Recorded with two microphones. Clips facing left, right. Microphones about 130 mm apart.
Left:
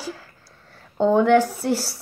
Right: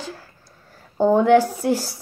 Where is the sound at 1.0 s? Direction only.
5° right (ahead or behind).